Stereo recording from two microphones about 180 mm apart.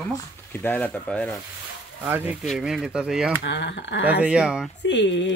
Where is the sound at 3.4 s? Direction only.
75° left (ahead or behind).